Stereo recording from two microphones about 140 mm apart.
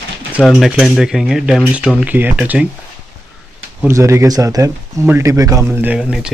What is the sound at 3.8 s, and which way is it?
Speech, 20° right (ahead or behind).